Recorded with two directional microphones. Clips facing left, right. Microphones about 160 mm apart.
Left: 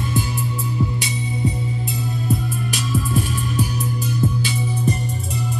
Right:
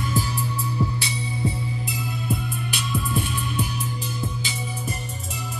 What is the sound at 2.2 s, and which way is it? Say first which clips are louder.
Music: left 5 dB; 40° left (ahead or behind).